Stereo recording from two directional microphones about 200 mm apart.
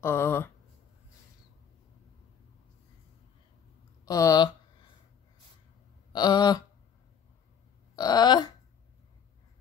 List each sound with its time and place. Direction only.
0.0 s speech: 10° left (ahead or behind)
4.0 s speech: 15° left (ahead or behind)
6.1 s a sound: 20° left (ahead or behind)
7.9 s wail: 20° left (ahead or behind)